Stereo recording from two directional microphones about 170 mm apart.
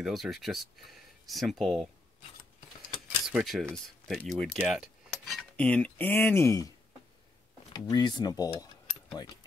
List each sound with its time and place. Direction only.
0.0 s speech: centre (ahead or behind)
3.3 s speech: centre (ahead or behind); by 6.7 s 15° left (ahead or behind)
7.7 s speech: 20° left (ahead or behind)
9.1 s mechanisms: 25° left (ahead or behind)